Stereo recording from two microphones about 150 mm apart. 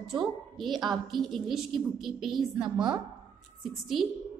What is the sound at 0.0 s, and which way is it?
A woman's voice, centre (ahead or behind).